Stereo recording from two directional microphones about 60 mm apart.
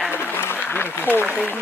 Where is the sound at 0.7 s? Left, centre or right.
Left.